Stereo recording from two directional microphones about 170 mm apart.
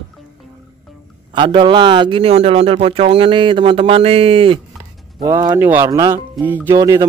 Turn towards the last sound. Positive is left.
turn(degrees=-20)  # may be behind; listen again after turning